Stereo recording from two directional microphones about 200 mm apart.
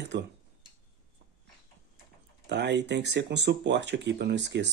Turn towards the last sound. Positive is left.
turn(degrees=-60)  # may be behind; listen again after turning